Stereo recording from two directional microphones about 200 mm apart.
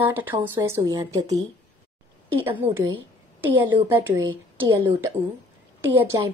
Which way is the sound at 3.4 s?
10° right (ahead or behind).